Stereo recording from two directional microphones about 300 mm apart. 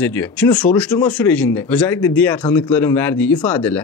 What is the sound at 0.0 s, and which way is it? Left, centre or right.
Speech, centre.